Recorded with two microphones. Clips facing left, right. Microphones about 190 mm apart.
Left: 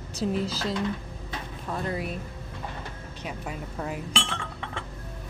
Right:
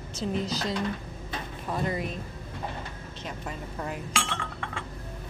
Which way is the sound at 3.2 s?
5° left (ahead or behind).